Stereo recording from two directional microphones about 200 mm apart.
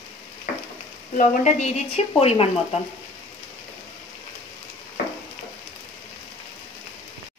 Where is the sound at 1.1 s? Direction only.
35° left (ahead or behind).